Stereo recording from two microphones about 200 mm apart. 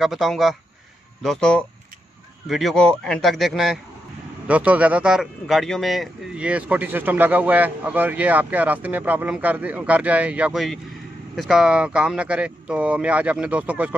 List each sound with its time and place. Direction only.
0.0 s a man's voice: centre (ahead or behind)